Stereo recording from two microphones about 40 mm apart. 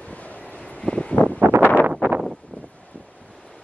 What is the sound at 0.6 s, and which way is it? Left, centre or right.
Vehicle, left.